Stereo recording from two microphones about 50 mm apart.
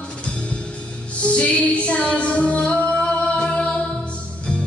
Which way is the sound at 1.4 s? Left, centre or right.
Left.